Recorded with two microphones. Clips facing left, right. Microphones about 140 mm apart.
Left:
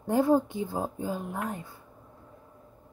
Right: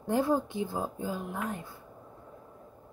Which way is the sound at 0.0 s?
45° left (ahead or behind).